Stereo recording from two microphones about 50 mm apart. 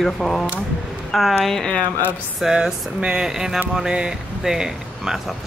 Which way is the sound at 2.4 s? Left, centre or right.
Centre.